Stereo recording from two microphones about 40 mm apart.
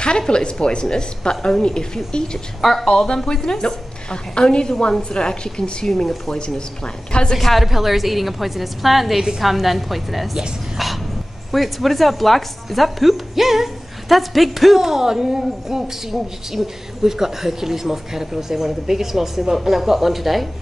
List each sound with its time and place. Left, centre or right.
0.3 s a woman's voice: left
2.6 s a woman's voice: centre; by 5.9 s left
5.9 s a woman's voice: centre
7.1 s a woman's voice: left
7.3 s a woman's voice: centre
11.5 s speech: centre